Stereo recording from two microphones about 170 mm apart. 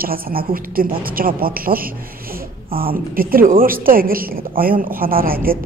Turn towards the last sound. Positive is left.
turn(degrees=-60)  # may be behind; listen again after turning